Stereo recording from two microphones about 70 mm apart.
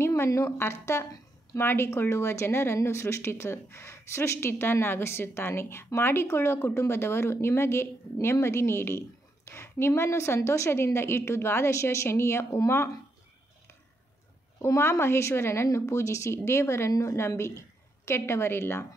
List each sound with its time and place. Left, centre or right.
0.0 s a sound: left
0.3 s a woman's voice: left
14.6 s a woman's voice: left